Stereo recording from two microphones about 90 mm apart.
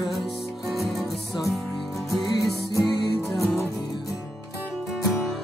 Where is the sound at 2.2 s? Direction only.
40° left (ahead or behind).